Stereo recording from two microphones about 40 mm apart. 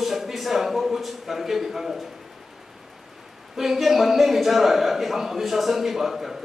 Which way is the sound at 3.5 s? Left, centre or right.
Centre.